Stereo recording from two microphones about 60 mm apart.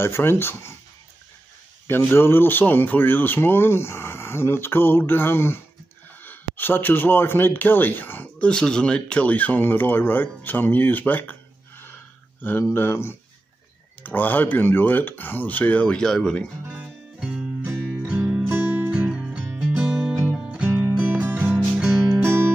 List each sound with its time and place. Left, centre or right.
0.0 s speech: left
1.9 s speech: left
8.4 s speech: centre; by 11.3 s left
12.4 s speech: left
14.0 s speech: left
16.0 s speech: centre
17.2 s music: centre; by 18.9 s right
18.9 s music: right
20.6 s music: right
21.8 s music: centre
22.2 s music: right